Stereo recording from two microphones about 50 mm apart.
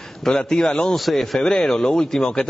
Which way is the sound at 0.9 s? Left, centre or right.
Centre.